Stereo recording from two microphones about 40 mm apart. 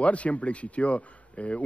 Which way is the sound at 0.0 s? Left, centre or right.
Left.